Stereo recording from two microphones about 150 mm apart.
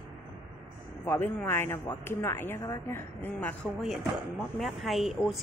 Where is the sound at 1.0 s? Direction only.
15° left (ahead or behind).